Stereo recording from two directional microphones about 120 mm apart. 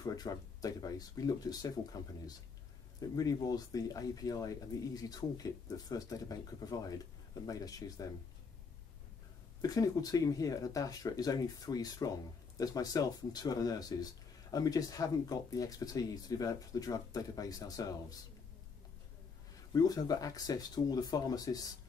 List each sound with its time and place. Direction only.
0.0 s speech: 30° left (ahead or behind)
9.6 s speech: 30° left (ahead or behind)
19.7 s speech: 30° left (ahead or behind)